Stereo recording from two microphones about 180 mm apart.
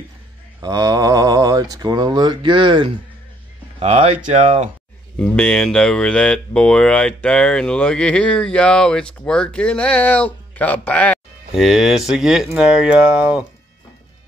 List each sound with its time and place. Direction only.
0.6 s speech: 20° right (ahead or behind)
3.8 s speech: 35° right (ahead or behind)
5.2 s speech: 5° left (ahead or behind)